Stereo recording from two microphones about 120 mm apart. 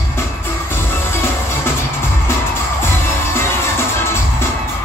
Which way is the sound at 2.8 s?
20° left (ahead or behind).